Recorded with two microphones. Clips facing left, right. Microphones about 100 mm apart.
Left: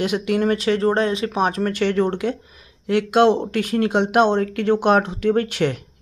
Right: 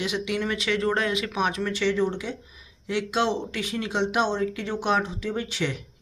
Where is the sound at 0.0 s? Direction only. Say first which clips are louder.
Left 8 dB; 50° left (ahead or behind).